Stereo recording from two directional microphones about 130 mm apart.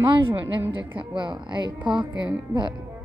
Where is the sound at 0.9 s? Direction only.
40° right (ahead or behind).